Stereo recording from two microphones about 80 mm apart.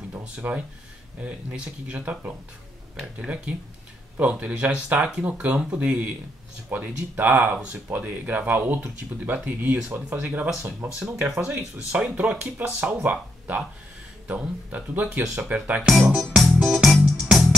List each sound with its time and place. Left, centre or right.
0.1 s speech: right
4.2 s speech: centre
11.0 s speech: centre
12.5 s speech: right
15.9 s speech: centre
16.6 s music: centre